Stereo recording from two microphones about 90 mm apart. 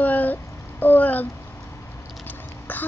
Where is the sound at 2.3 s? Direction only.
20° left (ahead or behind).